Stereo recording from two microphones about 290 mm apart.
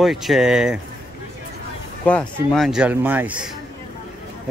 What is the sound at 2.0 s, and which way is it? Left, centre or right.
A man's voice, centre.